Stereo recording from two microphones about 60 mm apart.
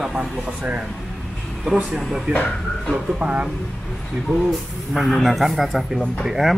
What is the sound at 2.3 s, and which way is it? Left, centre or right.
Speech, right.